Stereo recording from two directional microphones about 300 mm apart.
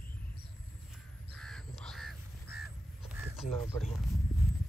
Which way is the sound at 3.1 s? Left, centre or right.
Centre.